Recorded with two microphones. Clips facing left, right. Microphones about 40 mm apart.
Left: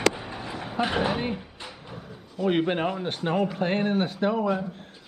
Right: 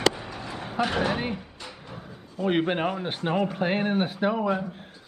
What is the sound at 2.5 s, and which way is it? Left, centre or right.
Speech, centre.